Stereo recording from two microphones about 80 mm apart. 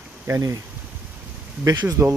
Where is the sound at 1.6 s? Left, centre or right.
Right.